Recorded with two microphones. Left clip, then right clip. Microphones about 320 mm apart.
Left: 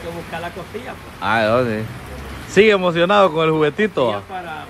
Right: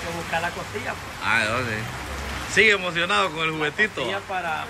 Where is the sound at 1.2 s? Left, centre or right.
Centre.